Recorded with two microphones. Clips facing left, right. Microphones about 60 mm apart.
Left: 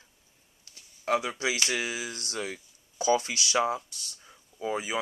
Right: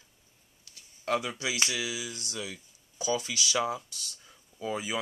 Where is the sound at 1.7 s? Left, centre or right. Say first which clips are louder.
Left 3 dB; left.